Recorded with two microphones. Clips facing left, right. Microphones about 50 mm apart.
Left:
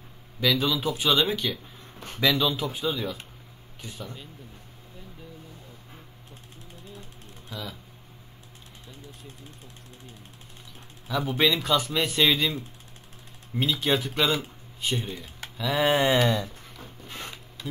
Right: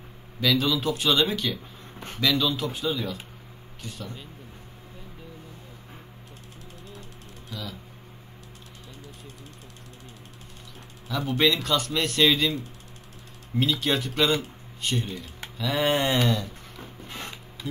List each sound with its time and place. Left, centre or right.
0.4 s a man's voice: centre
7.0 s mechanisms: centre
11.1 s a man's voice: centre
13.6 s a man's voice: centre
16.7 s a sound: centre